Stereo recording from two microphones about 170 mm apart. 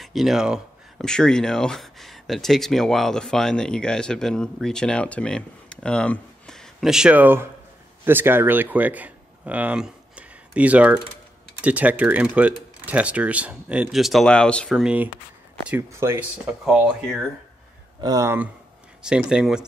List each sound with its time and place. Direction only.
0.0 s speech: centre (ahead or behind)
18.0 s speech: 20° right (ahead or behind)
19.0 s speech: 5° right (ahead or behind)